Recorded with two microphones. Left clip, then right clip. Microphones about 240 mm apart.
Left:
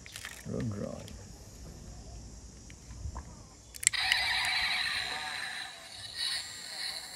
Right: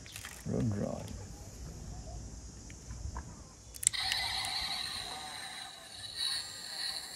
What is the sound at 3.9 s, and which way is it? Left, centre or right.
Camera, centre.